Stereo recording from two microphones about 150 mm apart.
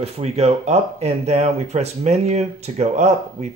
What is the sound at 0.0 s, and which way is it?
Speech, 45° right (ahead or behind).